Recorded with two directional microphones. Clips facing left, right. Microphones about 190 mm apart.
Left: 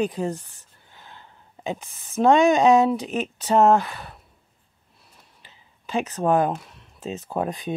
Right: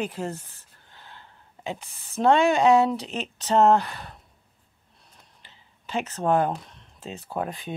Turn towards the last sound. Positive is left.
turn(degrees=20)  # may be behind; listen again after turning